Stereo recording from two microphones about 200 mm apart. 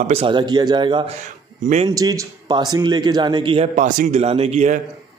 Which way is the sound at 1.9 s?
15° right (ahead or behind).